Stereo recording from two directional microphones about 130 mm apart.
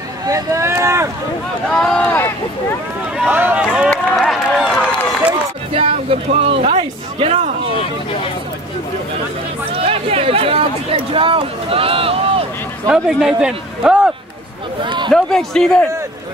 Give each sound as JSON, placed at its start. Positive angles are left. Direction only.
{"t": 0.3, "sound": "speech", "side_deg": -25}
{"t": 1.7, "sound": "a man's voice", "side_deg": 5}
{"t": 3.2, "sound": "a man's voice", "side_deg": -15}
{"t": 3.9, "sound": "run", "side_deg": 0}
{"t": 6.4, "sound": "speech", "side_deg": -50}
{"t": 9.7, "sound": "speech", "side_deg": -50}
{"t": 12.9, "sound": "a man's voice", "side_deg": -5}